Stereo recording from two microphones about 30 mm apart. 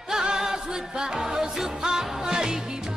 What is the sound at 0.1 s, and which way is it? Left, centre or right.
Music, right.